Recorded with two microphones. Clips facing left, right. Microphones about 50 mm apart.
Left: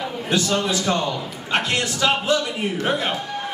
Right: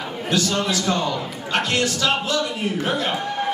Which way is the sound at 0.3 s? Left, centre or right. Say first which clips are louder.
Even; centre.